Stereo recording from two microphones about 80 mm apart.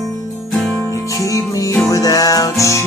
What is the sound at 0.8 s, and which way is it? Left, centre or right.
Music, left.